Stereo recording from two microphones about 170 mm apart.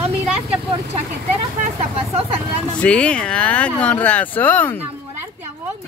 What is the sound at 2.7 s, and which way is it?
Speech, 5° left (ahead or behind).